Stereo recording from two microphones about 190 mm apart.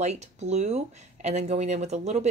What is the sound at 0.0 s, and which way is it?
Speech, 35° right (ahead or behind).